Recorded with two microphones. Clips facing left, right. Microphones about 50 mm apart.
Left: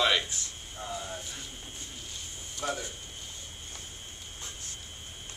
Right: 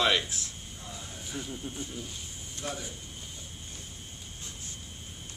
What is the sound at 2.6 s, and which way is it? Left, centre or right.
Speech, left.